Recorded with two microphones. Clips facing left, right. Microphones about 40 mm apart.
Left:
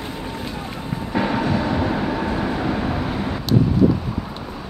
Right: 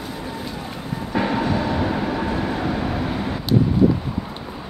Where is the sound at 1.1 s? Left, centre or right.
Centre.